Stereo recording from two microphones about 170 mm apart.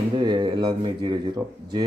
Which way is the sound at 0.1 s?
25° right (ahead or behind).